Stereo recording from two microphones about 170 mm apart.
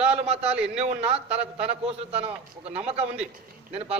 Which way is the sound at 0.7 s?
35° right (ahead or behind).